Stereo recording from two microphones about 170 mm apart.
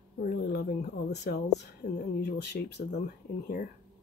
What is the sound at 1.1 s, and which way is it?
Speech, 75° left (ahead or behind).